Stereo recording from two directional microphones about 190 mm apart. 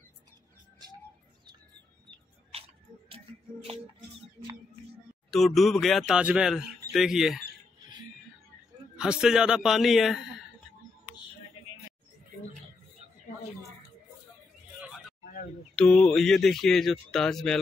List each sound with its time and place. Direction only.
3.7 s speech: 30° right (ahead or behind)
5.3 s a man's voice: centre (ahead or behind)
8.9 s a man's voice: 5° right (ahead or behind)
15.7 s a man's voice: 5° left (ahead or behind)